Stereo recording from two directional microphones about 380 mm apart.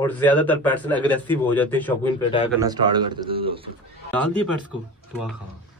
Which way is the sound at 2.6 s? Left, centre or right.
Centre.